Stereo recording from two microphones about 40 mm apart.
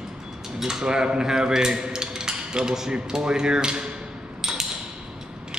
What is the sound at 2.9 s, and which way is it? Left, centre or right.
Speech, centre.